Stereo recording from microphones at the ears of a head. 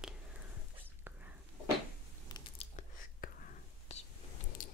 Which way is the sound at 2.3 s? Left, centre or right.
Left.